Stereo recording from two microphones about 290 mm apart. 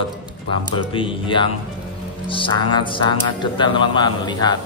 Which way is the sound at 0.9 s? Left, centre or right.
Centre.